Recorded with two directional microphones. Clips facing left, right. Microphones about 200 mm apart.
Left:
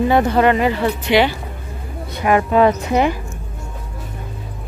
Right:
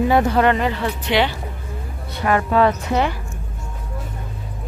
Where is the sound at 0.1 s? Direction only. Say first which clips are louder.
Left 3 dB; centre (ahead or behind).